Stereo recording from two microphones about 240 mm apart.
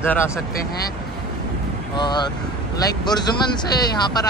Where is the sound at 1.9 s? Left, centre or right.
Centre.